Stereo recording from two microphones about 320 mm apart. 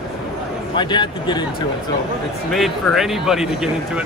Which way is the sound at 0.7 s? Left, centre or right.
Centre.